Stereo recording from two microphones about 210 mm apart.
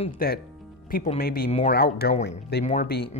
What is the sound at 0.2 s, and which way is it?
Speech, 45° left (ahead or behind).